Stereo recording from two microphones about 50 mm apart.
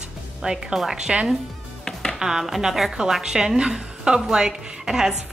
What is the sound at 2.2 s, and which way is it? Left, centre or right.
A woman's voice, centre.